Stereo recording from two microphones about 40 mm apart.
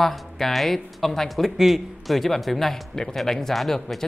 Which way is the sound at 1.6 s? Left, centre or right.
Centre.